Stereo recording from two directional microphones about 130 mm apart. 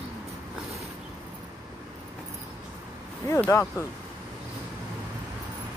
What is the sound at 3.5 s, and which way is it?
Speech, 25° left (ahead or behind).